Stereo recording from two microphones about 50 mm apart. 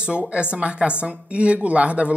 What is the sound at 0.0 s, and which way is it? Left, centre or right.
Speech, right.